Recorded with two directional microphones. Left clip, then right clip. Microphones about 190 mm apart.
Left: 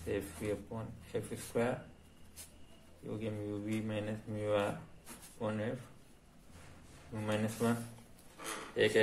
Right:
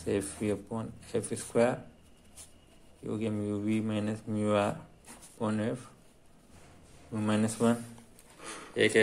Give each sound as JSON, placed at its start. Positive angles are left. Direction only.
{"t": 0.0, "sound": "speech", "side_deg": -50}
{"t": 3.1, "sound": "speech", "side_deg": -50}
{"t": 7.2, "sound": "speech", "side_deg": -45}
{"t": 8.7, "sound": "speech", "side_deg": -30}